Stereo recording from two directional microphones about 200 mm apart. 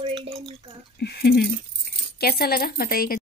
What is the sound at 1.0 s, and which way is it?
A woman's voice, 55° left (ahead or behind).